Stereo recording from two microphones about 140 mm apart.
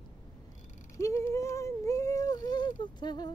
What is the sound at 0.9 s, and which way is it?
Speech, 20° left (ahead or behind).